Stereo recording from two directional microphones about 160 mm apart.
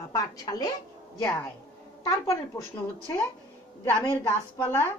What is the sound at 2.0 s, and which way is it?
Speech, 20° left (ahead or behind).